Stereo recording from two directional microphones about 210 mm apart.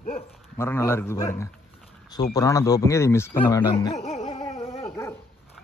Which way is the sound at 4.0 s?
30° left (ahead or behind).